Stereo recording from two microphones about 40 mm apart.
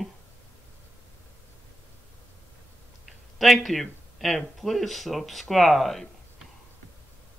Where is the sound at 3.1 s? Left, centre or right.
Centre.